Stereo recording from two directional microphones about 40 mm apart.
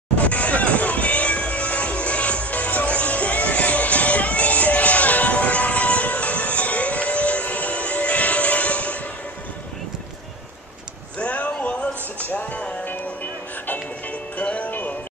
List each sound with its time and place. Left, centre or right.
0.3 s music: left
11.1 s a sound: left
12.3 s music: left
14.3 s music: left